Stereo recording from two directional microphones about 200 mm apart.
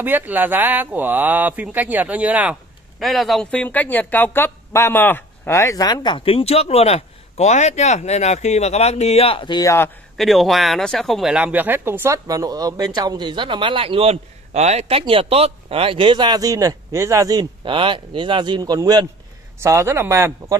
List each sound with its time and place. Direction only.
0.0 s speech: 10° right (ahead or behind); by 9.8 s 15° left (ahead or behind)
10.1 s speech: centre (ahead or behind)